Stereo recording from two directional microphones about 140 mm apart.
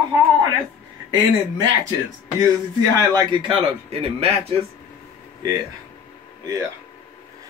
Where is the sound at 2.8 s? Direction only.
25° right (ahead or behind).